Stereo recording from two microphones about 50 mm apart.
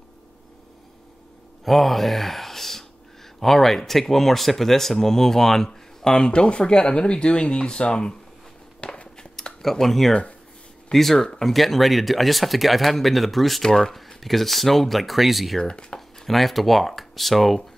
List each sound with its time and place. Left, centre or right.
1.6 s speech: centre
8.8 s dishes: left
9.4 s speech: centre
15.6 s speech: centre
16.3 s speech: centre